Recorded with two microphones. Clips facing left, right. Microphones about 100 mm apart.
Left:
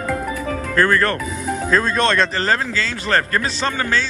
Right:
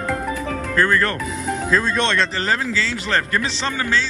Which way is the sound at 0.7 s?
45° left (ahead or behind).